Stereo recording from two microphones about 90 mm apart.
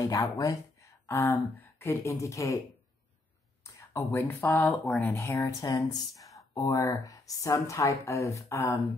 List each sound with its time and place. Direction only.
0.0 s a sound: 45° left (ahead or behind)
1.0 s speech: 25° left (ahead or behind)
3.7 s speech: 30° left (ahead or behind)